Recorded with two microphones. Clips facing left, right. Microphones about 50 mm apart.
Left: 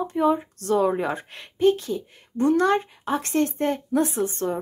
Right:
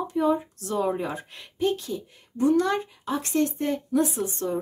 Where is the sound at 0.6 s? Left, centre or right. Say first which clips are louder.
Left 5 dB; left.